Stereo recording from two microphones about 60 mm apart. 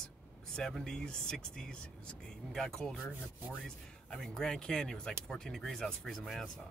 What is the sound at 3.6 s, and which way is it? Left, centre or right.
Speech, centre.